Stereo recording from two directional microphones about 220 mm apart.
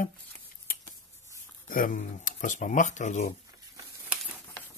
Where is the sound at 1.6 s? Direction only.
40° left (ahead or behind).